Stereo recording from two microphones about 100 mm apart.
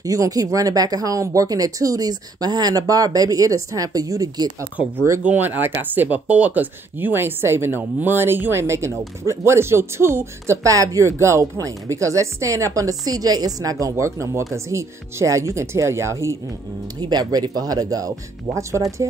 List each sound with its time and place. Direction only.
0.0 s speech: 35° right (ahead or behind)
5.2 s speech: 15° right (ahead or behind)
17.1 s speech: 40° right (ahead or behind)